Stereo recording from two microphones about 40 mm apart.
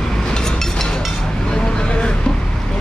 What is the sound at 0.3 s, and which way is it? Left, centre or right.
Train, centre.